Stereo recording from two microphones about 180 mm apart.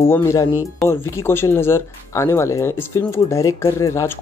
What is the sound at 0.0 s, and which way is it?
Speech, 15° left (ahead or behind).